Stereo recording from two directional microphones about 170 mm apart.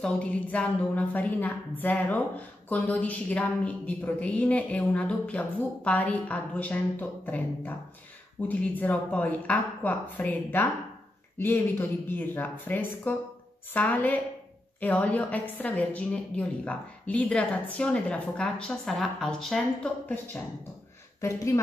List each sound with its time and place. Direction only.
0.0 s a woman's voice: 10° left (ahead or behind)